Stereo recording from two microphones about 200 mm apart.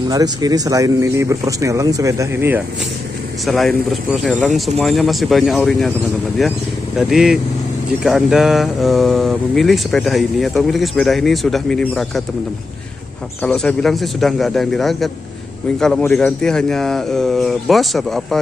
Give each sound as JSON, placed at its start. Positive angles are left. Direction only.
{"t": 0.1, "sound": "speech", "side_deg": -20}
{"t": 3.4, "sound": "speech", "side_deg": 0}
{"t": 13.4, "sound": "speech", "side_deg": 5}